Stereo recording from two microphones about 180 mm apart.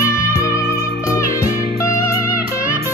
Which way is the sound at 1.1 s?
15° left (ahead or behind).